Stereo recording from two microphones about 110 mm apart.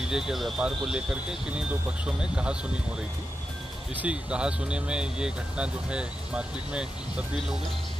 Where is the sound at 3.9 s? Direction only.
10° right (ahead or behind).